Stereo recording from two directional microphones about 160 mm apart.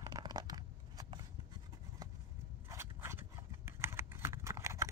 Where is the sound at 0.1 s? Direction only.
25° right (ahead or behind).